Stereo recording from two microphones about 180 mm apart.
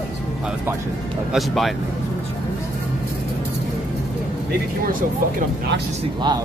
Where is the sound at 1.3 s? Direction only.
Centre (ahead or behind).